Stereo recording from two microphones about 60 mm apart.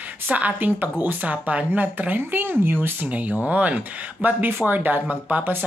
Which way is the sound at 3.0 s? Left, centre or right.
Right.